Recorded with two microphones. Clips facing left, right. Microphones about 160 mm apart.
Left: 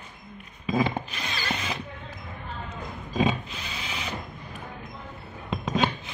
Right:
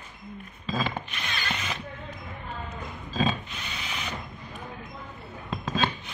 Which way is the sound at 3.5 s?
30° left (ahead or behind).